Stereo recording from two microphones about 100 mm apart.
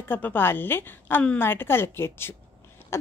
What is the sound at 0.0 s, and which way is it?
A woman's voice, 20° left (ahead or behind).